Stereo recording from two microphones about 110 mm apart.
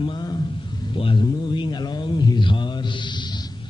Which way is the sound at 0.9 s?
50° left (ahead or behind).